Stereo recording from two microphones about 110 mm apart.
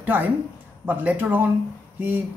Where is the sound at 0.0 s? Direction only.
15° right (ahead or behind).